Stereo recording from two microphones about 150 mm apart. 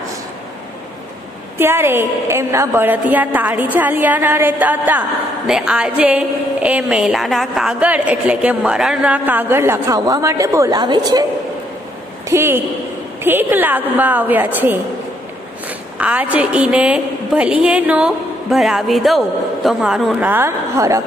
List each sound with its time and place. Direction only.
1.6 s a woman's voice: 15° right (ahead or behind)
12.3 s a woman's voice: 15° right (ahead or behind)
16.0 s a woman's voice: 10° right (ahead or behind)